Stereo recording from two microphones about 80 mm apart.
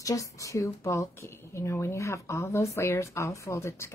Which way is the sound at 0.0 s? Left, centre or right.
Left.